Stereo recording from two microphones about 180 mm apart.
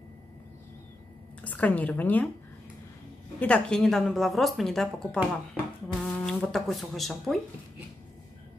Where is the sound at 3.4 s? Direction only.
5° left (ahead or behind).